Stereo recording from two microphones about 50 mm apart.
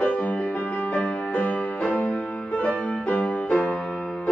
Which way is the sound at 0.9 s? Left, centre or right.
Left.